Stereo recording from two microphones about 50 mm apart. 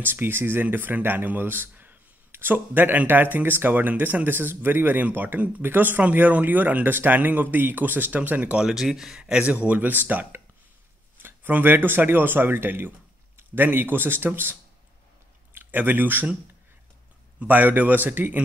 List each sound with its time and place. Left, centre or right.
0.0 s speech: right
8.5 s speech: centre
9.2 s speech: right
11.2 s speech: right
17.4 s speech: right